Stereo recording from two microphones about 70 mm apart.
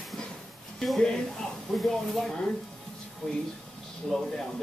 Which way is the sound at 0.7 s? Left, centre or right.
Centre.